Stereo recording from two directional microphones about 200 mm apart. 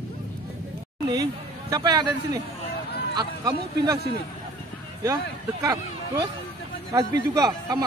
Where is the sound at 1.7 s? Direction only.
20° right (ahead or behind).